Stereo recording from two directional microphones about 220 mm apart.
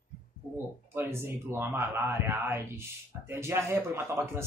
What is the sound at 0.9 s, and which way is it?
Speech, 10° right (ahead or behind).